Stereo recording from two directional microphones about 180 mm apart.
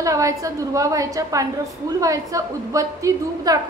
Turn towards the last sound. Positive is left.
turn(degrees=-20)  # may be behind; listen again after turning